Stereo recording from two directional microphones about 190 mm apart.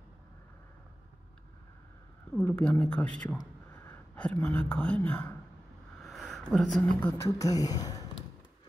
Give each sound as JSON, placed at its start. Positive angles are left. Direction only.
{"t": 2.3, "sound": "a man's voice", "side_deg": 10}
{"t": 6.0, "sound": "a sound", "side_deg": 0}
{"t": 7.0, "sound": "speech", "side_deg": 15}